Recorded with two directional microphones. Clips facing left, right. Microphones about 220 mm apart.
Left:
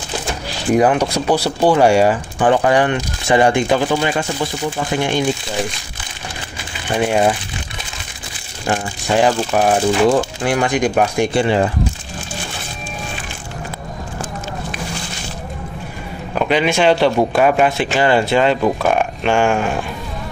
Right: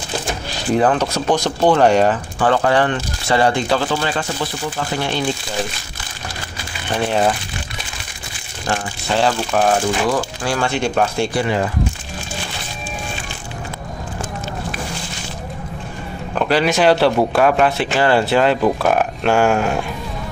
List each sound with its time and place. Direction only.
0.7 s speech: 10° left (ahead or behind)
7.1 s speech: 10° left (ahead or behind)
8.6 s speech: 15° left (ahead or behind)
11.3 s speech: 30° left (ahead or behind)
16.3 s speech: 5° right (ahead or behind)